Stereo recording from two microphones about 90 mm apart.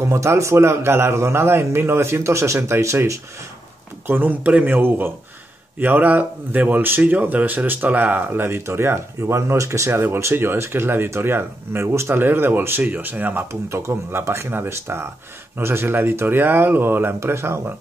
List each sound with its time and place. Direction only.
0.0 s a man's voice: 30° right (ahead or behind)
4.1 s speech: 20° right (ahead or behind)